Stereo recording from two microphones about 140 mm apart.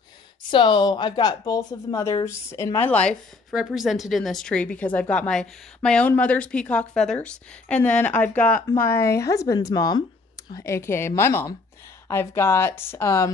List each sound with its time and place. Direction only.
0.5 s a woman's voice: 35° left (ahead or behind); by 3.2 s 10° left (ahead or behind)
3.5 s a woman's voice: centre (ahead or behind); by 13.3 s 20° left (ahead or behind)